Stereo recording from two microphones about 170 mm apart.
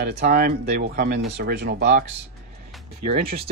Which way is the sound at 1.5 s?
80° right.